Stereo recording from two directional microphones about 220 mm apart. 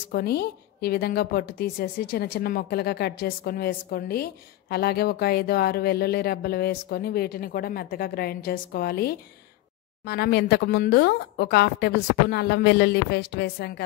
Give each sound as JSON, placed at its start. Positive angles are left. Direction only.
{"t": 0.1, "sound": "a woman's voice", "side_deg": 45}